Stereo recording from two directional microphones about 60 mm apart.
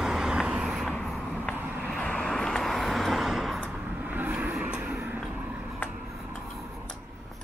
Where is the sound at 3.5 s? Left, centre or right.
Right.